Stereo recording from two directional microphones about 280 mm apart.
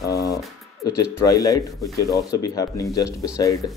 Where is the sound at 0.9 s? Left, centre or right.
Centre.